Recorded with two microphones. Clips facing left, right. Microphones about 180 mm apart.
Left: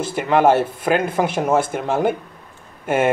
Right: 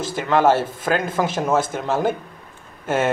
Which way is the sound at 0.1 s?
10° left (ahead or behind).